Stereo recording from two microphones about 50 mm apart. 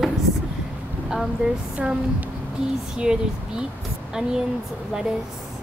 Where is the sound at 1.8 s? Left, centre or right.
Right.